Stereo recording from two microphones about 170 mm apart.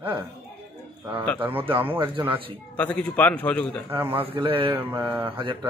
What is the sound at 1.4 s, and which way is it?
Speech, 10° right (ahead or behind).